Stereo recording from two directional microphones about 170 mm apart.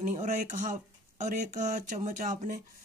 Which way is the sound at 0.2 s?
50° right (ahead or behind).